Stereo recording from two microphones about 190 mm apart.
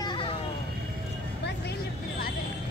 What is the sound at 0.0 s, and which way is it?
Vehicle, 25° left (ahead or behind).